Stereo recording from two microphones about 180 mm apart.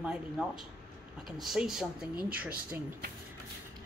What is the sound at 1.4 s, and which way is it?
Speech, centre (ahead or behind).